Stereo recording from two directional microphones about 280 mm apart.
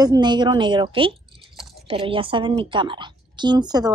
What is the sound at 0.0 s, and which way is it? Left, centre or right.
A woman's voice, centre.